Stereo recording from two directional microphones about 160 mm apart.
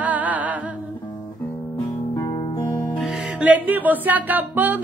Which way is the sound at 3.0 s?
Centre (ahead or behind).